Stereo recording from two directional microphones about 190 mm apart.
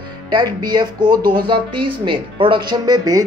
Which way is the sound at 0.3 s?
20° right (ahead or behind).